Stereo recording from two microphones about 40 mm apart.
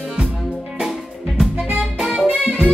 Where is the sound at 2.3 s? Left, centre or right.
Right.